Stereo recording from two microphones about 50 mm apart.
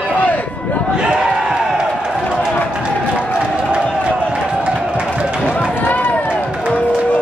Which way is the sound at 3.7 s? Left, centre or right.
Centre.